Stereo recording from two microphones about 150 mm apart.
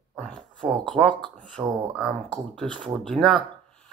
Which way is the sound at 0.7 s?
Centre (ahead or behind).